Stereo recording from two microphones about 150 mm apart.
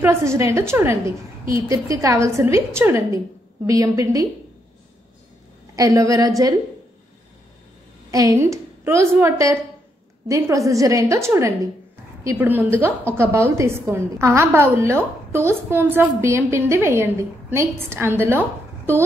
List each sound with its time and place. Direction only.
0.0 s a woman's voice: 20° right (ahead or behind)
5.8 s a woman's voice: 20° right (ahead or behind)
8.1 s a woman's voice: 20° right (ahead or behind)